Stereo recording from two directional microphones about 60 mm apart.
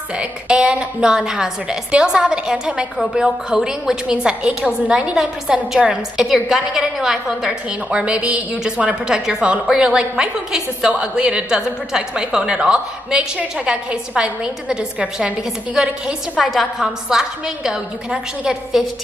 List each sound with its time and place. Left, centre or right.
0.2 s a woman's voice: centre